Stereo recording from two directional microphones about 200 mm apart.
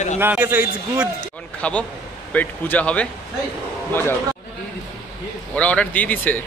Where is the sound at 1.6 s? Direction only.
5° left (ahead or behind).